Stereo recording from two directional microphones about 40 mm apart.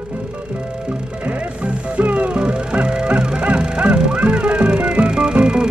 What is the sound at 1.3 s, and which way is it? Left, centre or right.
Music, right.